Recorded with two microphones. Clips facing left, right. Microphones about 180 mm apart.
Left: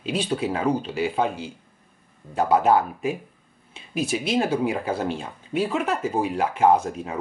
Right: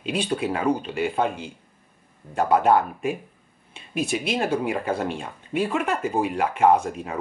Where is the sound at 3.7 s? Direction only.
55° right (ahead or behind).